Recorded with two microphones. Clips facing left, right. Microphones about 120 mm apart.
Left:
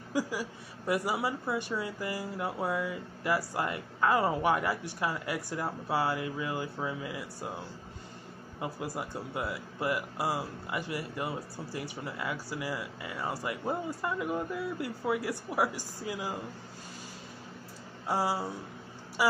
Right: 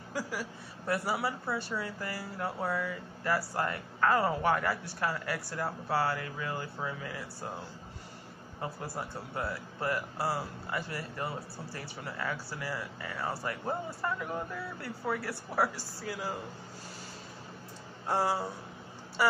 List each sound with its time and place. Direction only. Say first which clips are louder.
0.1 s speech: left 4 dB; 15° left (ahead or behind)
8.5 s speech: left 2 dB; 15° left (ahead or behind)
18.0 s speech: even; 10° left (ahead or behind)